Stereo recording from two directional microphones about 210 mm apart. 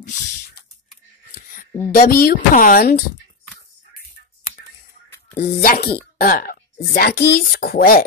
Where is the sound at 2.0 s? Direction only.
45° left (ahead or behind).